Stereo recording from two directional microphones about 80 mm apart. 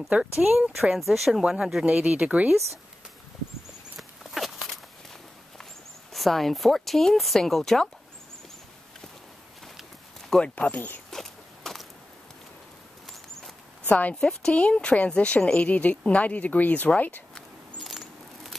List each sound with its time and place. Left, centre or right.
0.1 s speech: centre
3.9 s a sound: centre
6.1 s speech: centre
10.3 s a woman's voice: centre
11.1 s a sound: centre
13.8 s a woman's voice: centre
17.8 s mouse: centre